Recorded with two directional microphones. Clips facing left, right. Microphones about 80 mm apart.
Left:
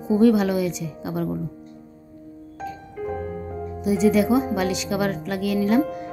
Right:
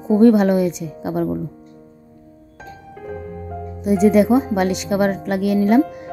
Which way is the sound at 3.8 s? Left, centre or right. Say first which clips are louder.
Right 5 dB; right.